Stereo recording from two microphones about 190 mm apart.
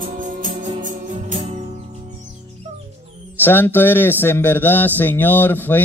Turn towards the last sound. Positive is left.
turn(degrees=10)  # may be behind; listen again after turning